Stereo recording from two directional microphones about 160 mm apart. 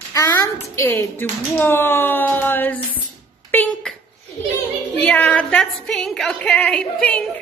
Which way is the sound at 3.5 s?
10° left (ahead or behind).